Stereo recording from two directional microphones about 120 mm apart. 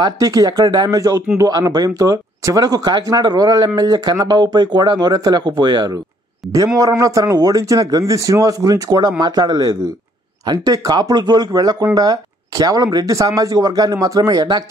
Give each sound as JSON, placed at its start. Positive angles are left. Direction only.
{"t": 0.0, "sound": "speech", "side_deg": -30}